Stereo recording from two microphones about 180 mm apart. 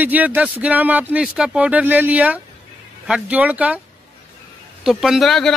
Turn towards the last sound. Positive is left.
turn(degrees=0)  # may be behind; listen again after turning